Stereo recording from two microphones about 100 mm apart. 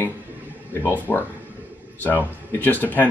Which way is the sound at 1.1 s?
20° left (ahead or behind).